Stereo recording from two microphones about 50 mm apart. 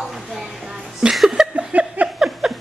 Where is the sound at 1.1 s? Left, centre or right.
Centre.